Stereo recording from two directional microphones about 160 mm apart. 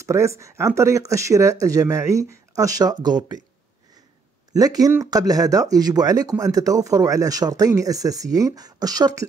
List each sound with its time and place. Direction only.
0.0 s speech: 20° right (ahead or behind)
4.6 s speech: 25° right (ahead or behind)